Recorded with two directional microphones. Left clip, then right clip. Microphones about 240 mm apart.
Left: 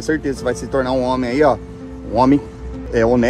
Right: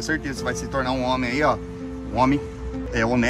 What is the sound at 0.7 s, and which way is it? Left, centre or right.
Speech, right.